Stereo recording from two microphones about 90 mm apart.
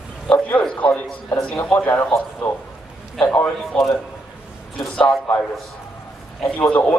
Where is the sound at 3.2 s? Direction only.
15° left (ahead or behind).